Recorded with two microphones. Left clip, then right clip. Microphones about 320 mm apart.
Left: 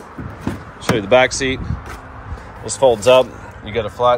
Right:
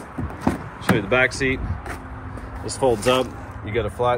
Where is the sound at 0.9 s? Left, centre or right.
Centre.